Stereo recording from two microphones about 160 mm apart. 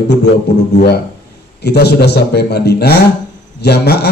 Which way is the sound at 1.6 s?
90° left.